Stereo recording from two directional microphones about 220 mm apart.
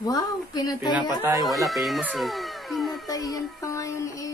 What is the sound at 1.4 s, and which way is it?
Speech, centre (ahead or behind).